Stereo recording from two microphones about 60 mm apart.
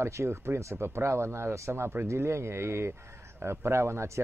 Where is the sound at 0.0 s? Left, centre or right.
Right.